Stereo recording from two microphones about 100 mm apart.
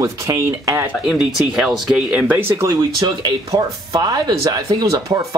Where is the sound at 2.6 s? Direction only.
40° right (ahead or behind).